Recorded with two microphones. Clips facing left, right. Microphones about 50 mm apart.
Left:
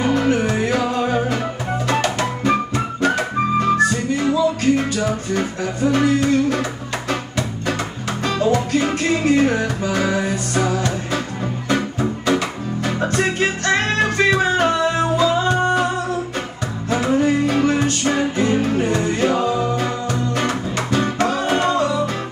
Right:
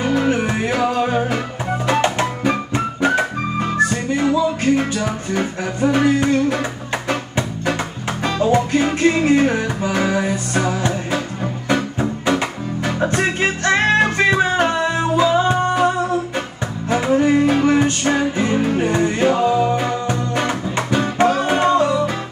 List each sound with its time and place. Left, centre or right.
0.1 s music: centre
3.7 s music: right
16.9 s music: centre